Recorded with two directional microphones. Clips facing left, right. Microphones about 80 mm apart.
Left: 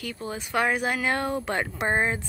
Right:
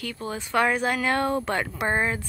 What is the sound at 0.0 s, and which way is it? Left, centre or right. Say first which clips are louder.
Speech: right 1 dB; centre.